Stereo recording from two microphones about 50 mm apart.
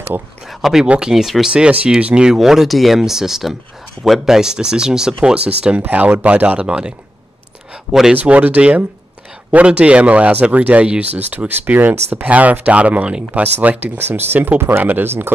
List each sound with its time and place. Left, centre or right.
0.5 s speech: centre
0.8 s speech: centre
1.1 s speech: centre
1.5 s speech: right
2.3 s speech: centre; by 6.6 s right
6.6 s speech: centre
8.1 s speech: right
13.9 s speech: right